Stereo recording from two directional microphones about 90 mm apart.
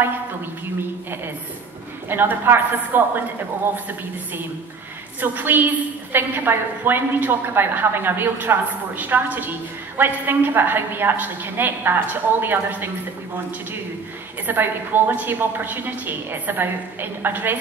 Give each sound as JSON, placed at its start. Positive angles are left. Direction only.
{"t": 2.0, "sound": "a woman's voice", "side_deg": -25}
{"t": 5.2, "sound": "a woman's voice", "side_deg": -20}
{"t": 14.4, "sound": "a woman's voice", "side_deg": -20}